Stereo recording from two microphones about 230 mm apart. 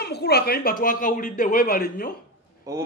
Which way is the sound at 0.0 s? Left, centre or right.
Left.